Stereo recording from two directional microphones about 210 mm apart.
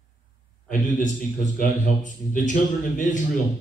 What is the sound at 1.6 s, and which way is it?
A man's voice, 40° left (ahead or behind).